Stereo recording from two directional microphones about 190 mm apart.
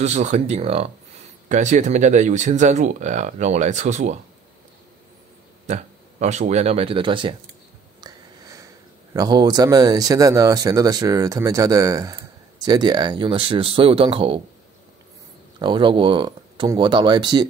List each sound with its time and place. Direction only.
0.0 s speech: 35° right (ahead or behind)
5.7 s speech: 35° right (ahead or behind)
8.0 s a sound: 20° right (ahead or behind)
9.1 s speech: 20° right (ahead or behind)
15.6 s speech: 25° right (ahead or behind)